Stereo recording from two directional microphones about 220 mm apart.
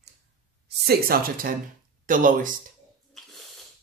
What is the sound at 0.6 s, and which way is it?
Speech, 45° right (ahead or behind).